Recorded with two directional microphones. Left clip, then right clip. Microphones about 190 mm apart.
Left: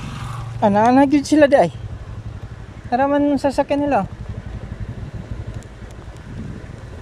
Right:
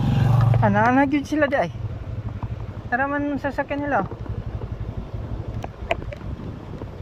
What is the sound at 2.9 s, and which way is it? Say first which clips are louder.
Speech: left 6 dB; 25° left (ahead or behind).